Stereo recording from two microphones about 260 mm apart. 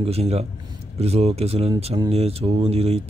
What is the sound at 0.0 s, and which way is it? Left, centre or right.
Speech, right.